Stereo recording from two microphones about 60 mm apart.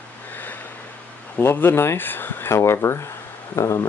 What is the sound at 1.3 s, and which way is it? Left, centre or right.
Speech, left.